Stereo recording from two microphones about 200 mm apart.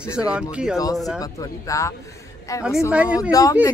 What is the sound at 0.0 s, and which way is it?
Speech, 5° right (ahead or behind).